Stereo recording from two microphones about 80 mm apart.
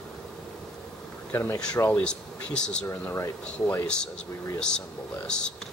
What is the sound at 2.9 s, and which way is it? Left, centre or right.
Speech, left.